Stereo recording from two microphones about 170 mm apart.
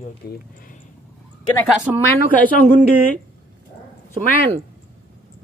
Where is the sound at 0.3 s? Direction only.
60° left (ahead or behind).